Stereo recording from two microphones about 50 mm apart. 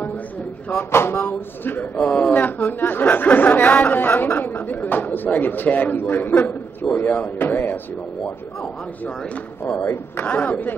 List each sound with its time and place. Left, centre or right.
0.7 s speech: left
2.0 s speech: left
2.3 s a man's voice: left
9.8 s speech: left
10.2 s speech: left